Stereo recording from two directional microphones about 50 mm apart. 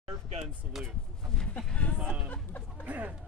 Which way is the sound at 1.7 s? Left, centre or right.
Left.